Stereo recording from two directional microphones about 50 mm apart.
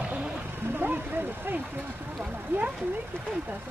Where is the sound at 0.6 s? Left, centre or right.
Right.